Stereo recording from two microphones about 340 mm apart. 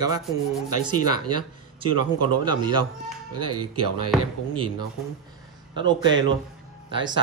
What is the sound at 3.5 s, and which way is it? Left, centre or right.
Speech, right.